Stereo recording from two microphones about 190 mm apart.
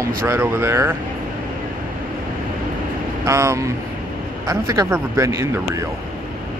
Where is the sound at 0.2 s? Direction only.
15° right (ahead or behind).